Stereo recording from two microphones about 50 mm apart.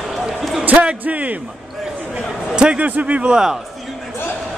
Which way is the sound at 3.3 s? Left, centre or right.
Centre.